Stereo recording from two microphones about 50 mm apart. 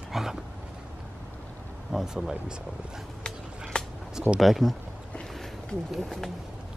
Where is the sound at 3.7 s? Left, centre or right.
Centre.